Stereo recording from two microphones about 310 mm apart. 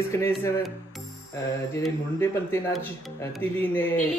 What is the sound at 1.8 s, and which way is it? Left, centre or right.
Speech, centre.